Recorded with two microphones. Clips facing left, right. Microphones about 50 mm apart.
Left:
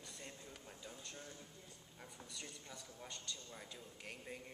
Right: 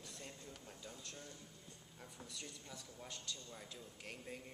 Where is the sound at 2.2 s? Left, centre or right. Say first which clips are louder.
Right 1 dB; centre.